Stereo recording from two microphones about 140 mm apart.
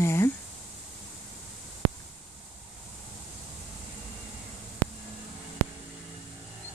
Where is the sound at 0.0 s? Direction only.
20° left (ahead or behind).